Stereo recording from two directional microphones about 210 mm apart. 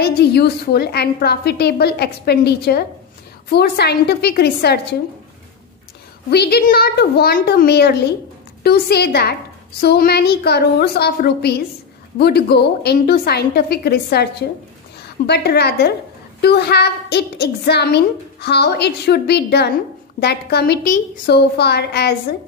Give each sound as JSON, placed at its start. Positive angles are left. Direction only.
{"t": 0.0, "sound": "a woman's voice", "side_deg": 50}
{"t": 6.3, "sound": "a woman's voice", "side_deg": 50}